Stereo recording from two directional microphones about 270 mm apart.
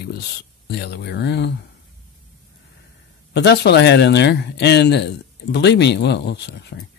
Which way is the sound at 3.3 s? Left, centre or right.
Left.